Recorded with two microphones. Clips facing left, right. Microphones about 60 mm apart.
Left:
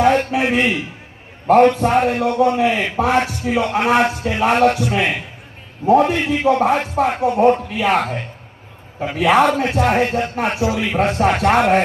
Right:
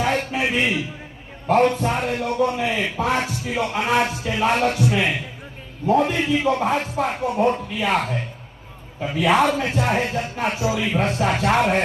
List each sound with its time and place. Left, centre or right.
0.0 s a sound: left
0.4 s a man's voice: left
1.5 s a man's voice: left